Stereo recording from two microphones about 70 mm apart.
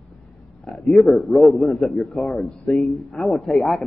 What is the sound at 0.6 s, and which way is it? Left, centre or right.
A man's voice, centre.